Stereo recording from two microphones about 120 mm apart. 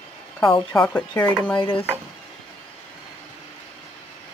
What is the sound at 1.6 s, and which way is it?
Stir, 45° left (ahead or behind).